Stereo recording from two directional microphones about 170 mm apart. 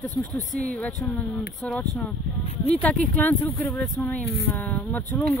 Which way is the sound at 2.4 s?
40° left (ahead or behind).